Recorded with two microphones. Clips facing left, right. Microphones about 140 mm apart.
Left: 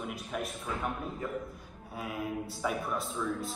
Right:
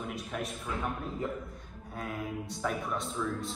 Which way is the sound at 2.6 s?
5° left (ahead or behind).